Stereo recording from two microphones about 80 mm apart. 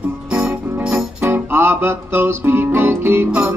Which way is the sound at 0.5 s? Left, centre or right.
Right.